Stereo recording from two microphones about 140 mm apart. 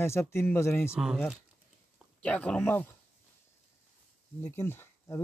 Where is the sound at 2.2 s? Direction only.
10° left (ahead or behind).